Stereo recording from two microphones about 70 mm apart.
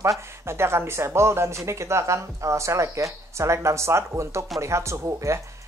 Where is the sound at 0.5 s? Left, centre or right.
Right.